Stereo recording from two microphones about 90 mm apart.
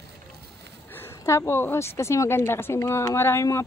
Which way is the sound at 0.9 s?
30° left (ahead or behind).